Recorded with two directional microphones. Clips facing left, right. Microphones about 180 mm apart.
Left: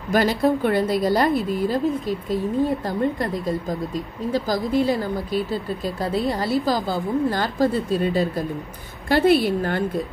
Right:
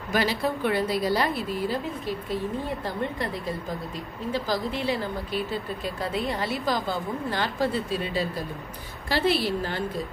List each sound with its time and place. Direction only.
0.1 s a woman's voice: 45° left (ahead or behind)